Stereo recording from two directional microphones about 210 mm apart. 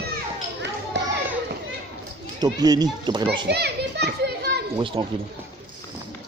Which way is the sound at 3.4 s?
50° right (ahead or behind).